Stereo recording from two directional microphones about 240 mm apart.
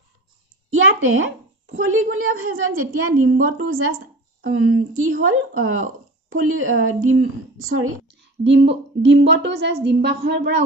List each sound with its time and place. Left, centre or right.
0.7 s a woman's voice: right